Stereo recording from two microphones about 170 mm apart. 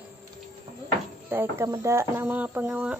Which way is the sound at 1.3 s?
15° right (ahead or behind).